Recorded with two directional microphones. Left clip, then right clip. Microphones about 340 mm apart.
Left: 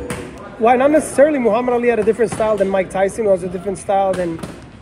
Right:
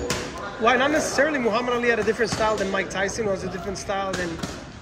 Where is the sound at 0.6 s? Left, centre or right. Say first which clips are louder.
Left 7 dB; centre.